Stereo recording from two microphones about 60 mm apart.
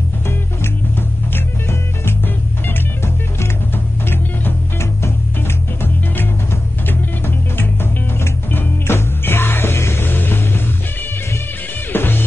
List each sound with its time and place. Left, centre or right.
1.7 s music: left
4.1 s music: left
6.9 s music: left
10.1 s music: left
11.9 s music: left